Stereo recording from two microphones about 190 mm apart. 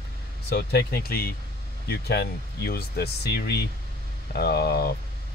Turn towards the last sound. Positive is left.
turn(degrees=55)  # may be behind; listen again after turning